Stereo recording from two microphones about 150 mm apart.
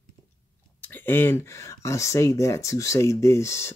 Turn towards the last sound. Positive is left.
turn(degrees=20)  # may be behind; listen again after turning